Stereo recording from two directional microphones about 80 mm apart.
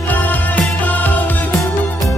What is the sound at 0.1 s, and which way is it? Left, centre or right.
Music, left.